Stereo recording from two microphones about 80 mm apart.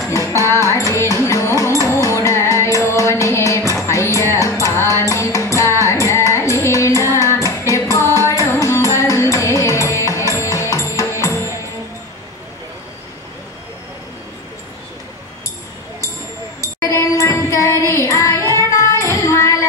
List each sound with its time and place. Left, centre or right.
0.1 s music: left
16.6 s music: left
18.4 s child singing: right
18.8 s music: left